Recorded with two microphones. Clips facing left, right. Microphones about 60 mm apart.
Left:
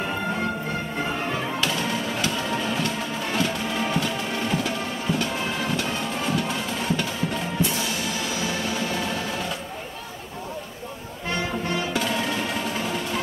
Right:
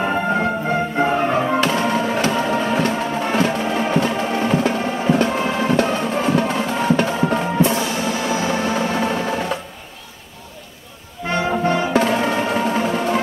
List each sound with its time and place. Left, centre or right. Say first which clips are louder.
0.0 s music: right 8 dB; right
11.3 s music: right 9 dB; right